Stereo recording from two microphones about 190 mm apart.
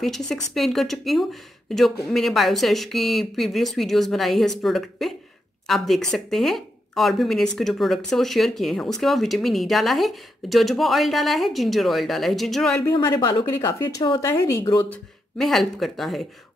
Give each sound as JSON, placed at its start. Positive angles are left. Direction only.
{"t": 0.0, "sound": "speech", "side_deg": 0}
{"t": 12.8, "sound": "speech", "side_deg": 20}
{"t": 14.9, "sound": "speech", "side_deg": 0}